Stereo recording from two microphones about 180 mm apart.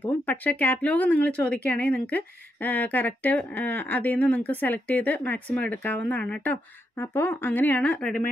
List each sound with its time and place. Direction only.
0.0 s speech: 10° left (ahead or behind)